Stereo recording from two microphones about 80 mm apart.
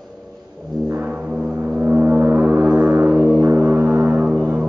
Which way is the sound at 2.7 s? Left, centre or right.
Centre.